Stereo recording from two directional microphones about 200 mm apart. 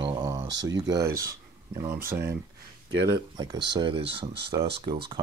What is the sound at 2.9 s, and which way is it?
Speech, 60° right (ahead or behind).